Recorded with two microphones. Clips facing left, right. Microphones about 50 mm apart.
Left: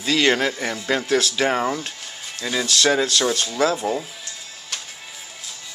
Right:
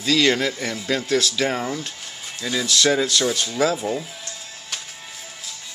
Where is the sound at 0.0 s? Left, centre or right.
Left.